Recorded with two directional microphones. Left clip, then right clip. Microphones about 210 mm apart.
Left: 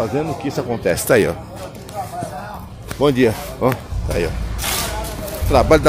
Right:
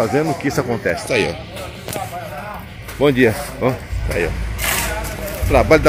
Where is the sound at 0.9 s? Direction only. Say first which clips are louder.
Left 6 dB; 65° left (ahead or behind).